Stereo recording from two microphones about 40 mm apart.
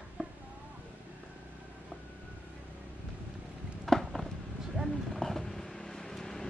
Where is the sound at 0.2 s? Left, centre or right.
Centre.